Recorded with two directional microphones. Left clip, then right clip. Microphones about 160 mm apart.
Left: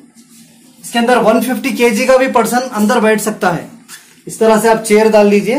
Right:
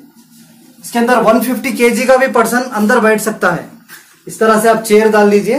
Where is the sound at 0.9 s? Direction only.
45° left (ahead or behind); by 5.6 s 70° left (ahead or behind).